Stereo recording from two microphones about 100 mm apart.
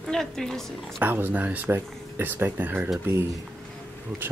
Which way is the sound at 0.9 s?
20° right (ahead or behind).